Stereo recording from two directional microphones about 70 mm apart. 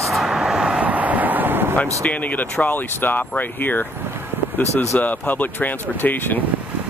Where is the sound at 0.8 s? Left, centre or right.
Right.